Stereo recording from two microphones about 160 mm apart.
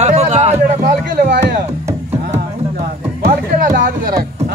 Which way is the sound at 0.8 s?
65° right (ahead or behind).